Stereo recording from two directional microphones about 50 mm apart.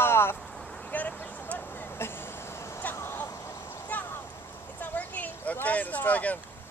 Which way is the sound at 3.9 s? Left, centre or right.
Left.